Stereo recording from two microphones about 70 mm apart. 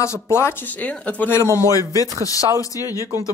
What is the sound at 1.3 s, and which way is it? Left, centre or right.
A man's voice, left.